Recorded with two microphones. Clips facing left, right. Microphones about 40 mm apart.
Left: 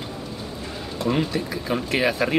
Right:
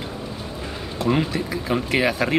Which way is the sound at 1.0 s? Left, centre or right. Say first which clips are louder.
Right 2 dB; centre.